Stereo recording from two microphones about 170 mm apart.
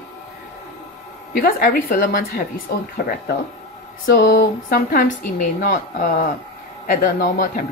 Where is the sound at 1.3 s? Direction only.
60° left (ahead or behind).